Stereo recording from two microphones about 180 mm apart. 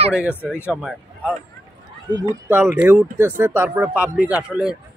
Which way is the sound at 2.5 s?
10° right (ahead or behind).